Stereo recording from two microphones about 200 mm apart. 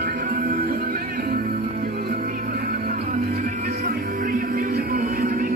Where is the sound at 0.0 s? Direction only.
45° right (ahead or behind).